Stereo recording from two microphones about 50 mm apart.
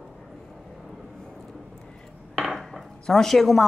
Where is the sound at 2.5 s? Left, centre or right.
Centre.